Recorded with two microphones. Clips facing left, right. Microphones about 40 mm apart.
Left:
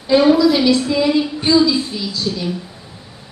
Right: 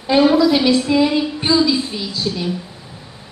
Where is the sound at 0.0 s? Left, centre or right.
Right.